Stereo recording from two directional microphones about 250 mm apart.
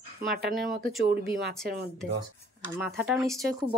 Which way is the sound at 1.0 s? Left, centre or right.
Right.